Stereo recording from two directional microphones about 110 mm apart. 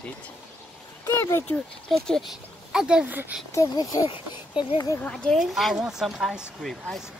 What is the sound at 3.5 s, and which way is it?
Speech, 35° left (ahead or behind).